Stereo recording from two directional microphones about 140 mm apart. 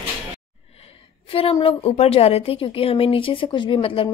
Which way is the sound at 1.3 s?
45° left (ahead or behind).